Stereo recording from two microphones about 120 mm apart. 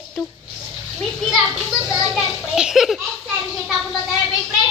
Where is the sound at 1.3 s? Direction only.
5° right (ahead or behind).